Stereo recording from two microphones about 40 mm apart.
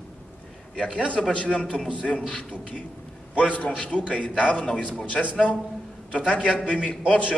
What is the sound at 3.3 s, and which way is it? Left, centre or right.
A man's voice, left.